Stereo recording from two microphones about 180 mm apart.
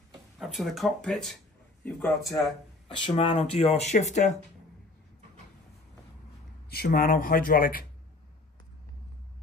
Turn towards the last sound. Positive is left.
turn(degrees=50)  # may be behind; listen again after turning